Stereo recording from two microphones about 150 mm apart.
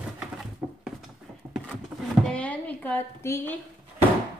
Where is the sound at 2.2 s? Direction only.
10° left (ahead or behind).